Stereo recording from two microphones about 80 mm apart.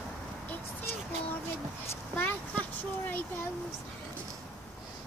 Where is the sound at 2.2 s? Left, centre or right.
Left.